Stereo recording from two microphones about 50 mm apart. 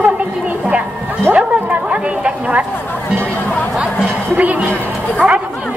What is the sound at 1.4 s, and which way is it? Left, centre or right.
Chatter, right.